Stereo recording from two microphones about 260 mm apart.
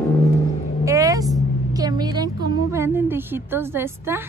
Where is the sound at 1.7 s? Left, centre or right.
Centre.